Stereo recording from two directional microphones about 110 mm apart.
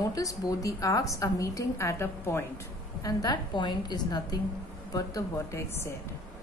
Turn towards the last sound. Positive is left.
turn(degrees=30)  # may be behind; listen again after turning